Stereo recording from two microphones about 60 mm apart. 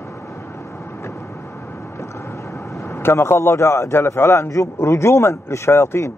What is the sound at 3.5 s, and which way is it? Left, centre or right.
A man's voice, left.